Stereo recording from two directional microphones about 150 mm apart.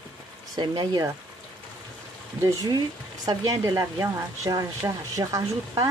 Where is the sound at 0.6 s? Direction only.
25° right (ahead or behind).